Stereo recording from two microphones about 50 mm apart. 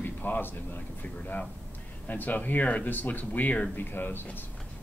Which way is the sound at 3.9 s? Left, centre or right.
Left.